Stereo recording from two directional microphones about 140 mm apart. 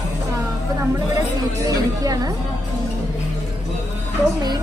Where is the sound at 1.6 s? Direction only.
25° right (ahead or behind).